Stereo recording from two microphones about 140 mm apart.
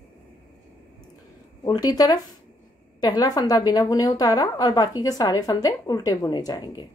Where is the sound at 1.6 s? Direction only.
30° left (ahead or behind).